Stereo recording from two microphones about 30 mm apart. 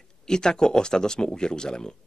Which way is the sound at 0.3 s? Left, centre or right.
Left.